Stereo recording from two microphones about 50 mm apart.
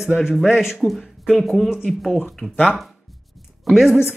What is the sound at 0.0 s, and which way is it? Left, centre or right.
Speech, centre.